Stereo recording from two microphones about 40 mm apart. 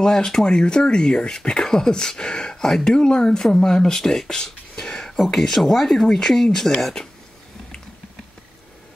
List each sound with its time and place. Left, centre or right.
0.0 s speech: centre
6.0 s speech: centre